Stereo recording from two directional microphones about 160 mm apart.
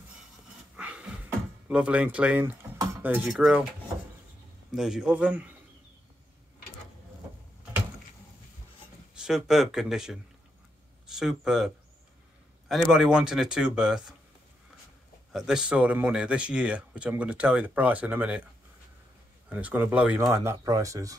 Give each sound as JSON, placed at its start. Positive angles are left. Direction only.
{"t": 0.7, "sound": "a sound", "side_deg": -5}
{"t": 1.7, "sound": "speech", "side_deg": -5}
{"t": 4.7, "sound": "speech", "side_deg": 0}
{"t": 9.1, "sound": "a man's voice", "side_deg": -5}
{"t": 15.3, "sound": "speech", "side_deg": -5}
{"t": 19.5, "sound": "speech", "side_deg": -10}